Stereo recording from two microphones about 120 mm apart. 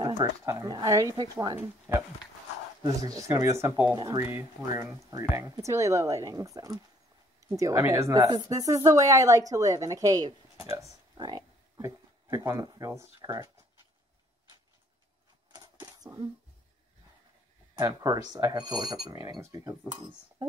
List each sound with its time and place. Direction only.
0.5 s speech: 30° right (ahead or behind)
1.1 s speech: 40° right (ahead or behind)
1.9 s speech: 20° right (ahead or behind)
2.8 s speech: 30° right (ahead or behind)
3.9 s speech: 35° right (ahead or behind)
4.2 s speech: 20° right (ahead or behind)
15.5 s a sound: 30° right (ahead or behind)
17.7 s speech: 30° right (ahead or behind)